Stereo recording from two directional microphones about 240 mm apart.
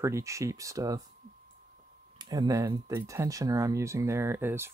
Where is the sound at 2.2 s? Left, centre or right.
Centre.